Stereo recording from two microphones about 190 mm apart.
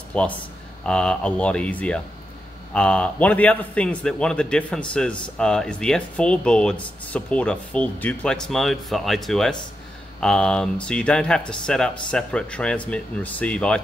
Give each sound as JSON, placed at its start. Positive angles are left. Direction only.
{"t": 0.1, "sound": "a man's voice", "side_deg": 5}